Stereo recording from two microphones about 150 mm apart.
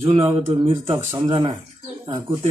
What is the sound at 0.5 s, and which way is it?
Speech, 40° right (ahead or behind).